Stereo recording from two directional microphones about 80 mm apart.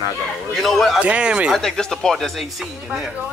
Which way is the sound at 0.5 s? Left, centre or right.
Centre.